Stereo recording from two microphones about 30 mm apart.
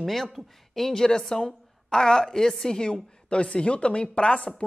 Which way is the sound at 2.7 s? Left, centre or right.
Left.